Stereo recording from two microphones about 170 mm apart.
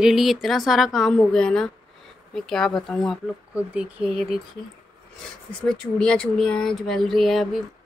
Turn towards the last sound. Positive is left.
turn(degrees=0)  # may be behind; listen again after turning